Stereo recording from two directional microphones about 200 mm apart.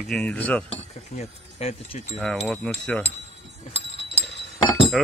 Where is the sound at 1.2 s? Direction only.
30° left (ahead or behind).